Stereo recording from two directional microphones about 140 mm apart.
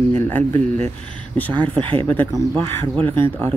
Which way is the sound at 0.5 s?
60° right (ahead or behind).